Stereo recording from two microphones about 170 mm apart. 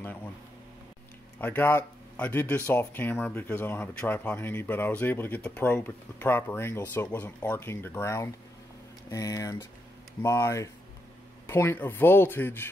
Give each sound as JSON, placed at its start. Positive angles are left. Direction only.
{"t": 1.4, "sound": "speech", "side_deg": 10}